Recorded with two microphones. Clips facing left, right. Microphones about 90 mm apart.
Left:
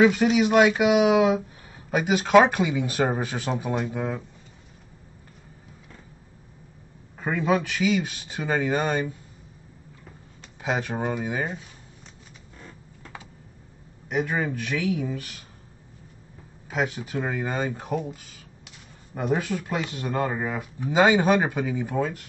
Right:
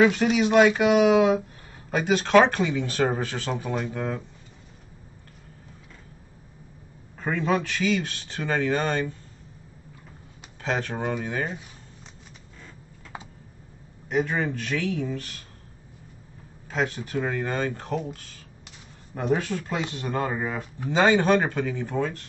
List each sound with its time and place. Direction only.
0.0 s speech: 5° left (ahead or behind)
7.2 s speech: 10° left (ahead or behind)
10.6 s speech: 10° left (ahead or behind)
13.1 s typing: 25° right (ahead or behind)
14.0 s speech: 5° left (ahead or behind)
16.7 s speech: 10° left (ahead or behind)